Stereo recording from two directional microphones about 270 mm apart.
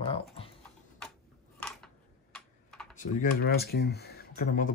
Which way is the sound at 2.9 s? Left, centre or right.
Left.